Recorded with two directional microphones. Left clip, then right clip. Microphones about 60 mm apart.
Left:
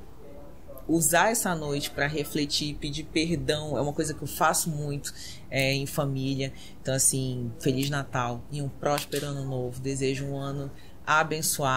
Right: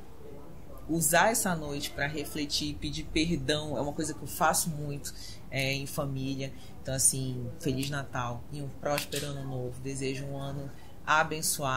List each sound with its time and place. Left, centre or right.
0.9 s speech: left